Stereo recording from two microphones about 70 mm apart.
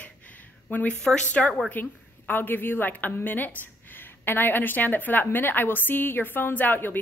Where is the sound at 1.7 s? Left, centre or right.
Left.